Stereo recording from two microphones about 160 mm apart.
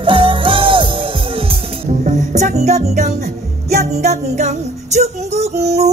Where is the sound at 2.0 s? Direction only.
50° right (ahead or behind).